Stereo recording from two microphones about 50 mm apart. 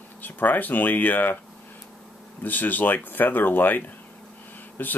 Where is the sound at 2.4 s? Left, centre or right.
Left.